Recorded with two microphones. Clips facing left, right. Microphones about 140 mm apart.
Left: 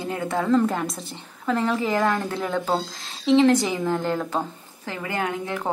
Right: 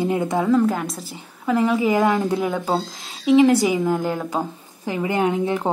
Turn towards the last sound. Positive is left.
turn(degrees=-20)  # may be behind; listen again after turning